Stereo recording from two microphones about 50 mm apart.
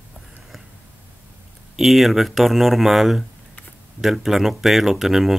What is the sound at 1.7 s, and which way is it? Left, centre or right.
Speech, centre.